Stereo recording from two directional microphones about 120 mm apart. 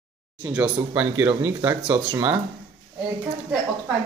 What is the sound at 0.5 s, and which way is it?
Speech, 15° right (ahead or behind).